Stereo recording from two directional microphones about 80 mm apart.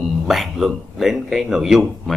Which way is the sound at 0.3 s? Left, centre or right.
Centre.